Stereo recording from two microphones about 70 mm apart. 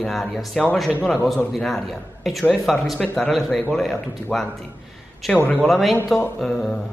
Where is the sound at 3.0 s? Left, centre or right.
Centre.